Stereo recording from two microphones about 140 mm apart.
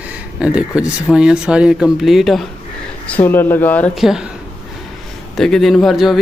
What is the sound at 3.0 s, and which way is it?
Speech, 15° left (ahead or behind).